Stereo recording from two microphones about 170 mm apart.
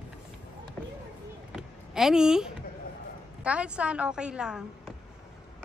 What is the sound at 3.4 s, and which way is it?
A woman's voice, 5° right (ahead or behind).